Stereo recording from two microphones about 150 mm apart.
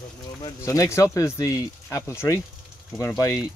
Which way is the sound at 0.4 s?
20° left (ahead or behind).